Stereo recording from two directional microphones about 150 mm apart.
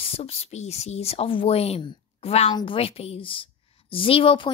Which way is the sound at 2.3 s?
45° left (ahead or behind).